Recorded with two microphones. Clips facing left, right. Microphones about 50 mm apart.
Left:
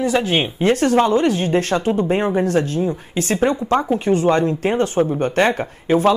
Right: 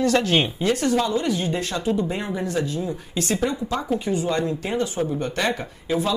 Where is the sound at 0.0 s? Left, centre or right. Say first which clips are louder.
Left 2 dB; centre.